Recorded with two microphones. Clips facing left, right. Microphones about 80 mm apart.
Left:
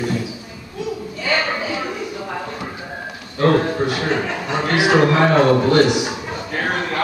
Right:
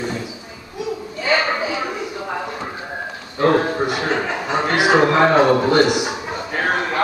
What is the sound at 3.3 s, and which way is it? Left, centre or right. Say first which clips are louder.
A man's voice: even; centre.